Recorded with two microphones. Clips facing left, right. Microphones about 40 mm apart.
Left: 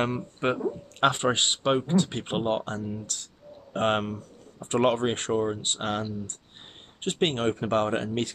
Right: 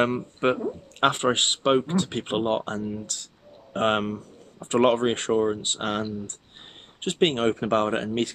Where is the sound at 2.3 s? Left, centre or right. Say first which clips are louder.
Right 2 dB; right.